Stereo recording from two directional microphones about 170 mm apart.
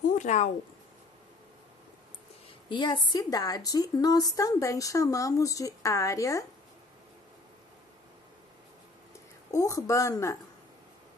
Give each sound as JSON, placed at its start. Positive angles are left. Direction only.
{"t": 0.2, "sound": "speech", "side_deg": 45}
{"t": 2.7, "sound": "a woman's voice", "side_deg": 25}
{"t": 9.5, "sound": "a woman's voice", "side_deg": 20}